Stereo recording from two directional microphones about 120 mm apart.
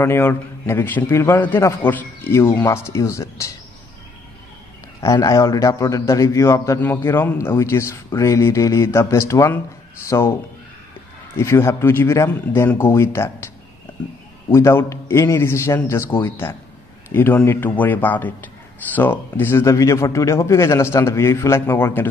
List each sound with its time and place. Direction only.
0.0 s a man's voice: 20° left (ahead or behind)
5.0 s a man's voice: 30° left (ahead or behind)
11.3 s a man's voice: 20° left (ahead or behind)
14.5 s a man's voice: 20° left (ahead or behind)